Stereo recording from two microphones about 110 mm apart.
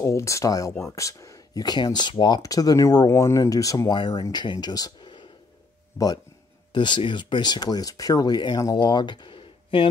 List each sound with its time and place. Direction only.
0.0 s speech: 30° left (ahead or behind); by 5.3 s 45° left (ahead or behind)
6.7 s speech: 45° left (ahead or behind)